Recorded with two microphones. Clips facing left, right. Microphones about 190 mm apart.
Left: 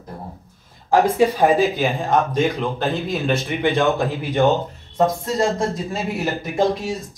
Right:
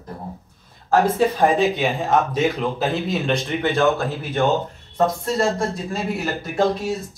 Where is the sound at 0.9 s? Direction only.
15° left (ahead or behind).